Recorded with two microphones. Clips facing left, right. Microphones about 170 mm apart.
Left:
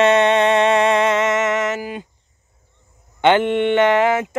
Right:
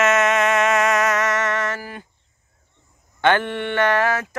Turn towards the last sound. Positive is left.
turn(degrees=20)  # may be behind; listen again after turning